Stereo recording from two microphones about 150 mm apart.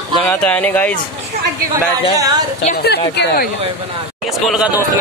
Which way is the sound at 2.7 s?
90° left.